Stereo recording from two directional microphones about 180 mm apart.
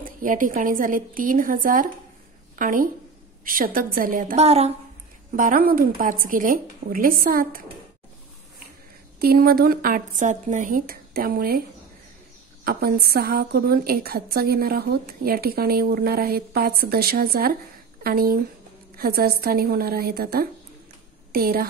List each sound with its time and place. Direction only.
0.0 s a woman's voice: 50° right (ahead or behind)
5.3 s a woman's voice: 50° right (ahead or behind)
9.2 s a woman's voice: 60° right (ahead or behind)
12.6 s a woman's voice: 55° right (ahead or behind)